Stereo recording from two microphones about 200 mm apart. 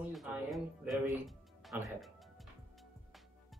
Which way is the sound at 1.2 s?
Centre (ahead or behind).